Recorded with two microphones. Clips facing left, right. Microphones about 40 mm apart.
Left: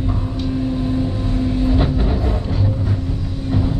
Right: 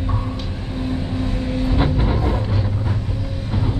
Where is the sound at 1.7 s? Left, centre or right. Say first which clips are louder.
Left 1 dB; centre.